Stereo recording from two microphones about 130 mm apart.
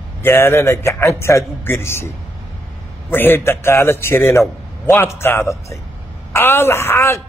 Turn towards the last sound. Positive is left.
turn(degrees=20)  # may be behind; listen again after turning